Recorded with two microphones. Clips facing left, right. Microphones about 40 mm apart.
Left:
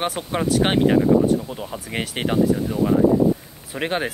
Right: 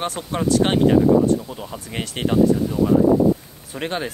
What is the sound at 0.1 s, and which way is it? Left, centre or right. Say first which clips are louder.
Speech: right 1 dB; centre.